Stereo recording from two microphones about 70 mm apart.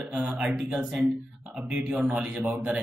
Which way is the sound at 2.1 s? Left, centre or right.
Centre.